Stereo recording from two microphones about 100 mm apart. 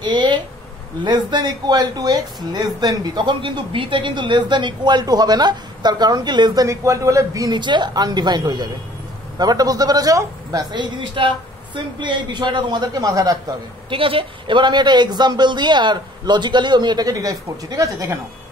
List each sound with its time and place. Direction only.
0.0 s a sound: 50° right (ahead or behind)
1.0 s speech: 45° right (ahead or behind)
7.5 s speech: 50° right (ahead or behind)
13.8 s speech: 60° right (ahead or behind); by 17.9 s 35° right (ahead or behind)